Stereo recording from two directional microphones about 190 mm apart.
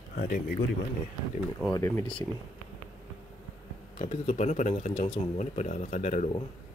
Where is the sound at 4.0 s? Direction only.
40° left (ahead or behind).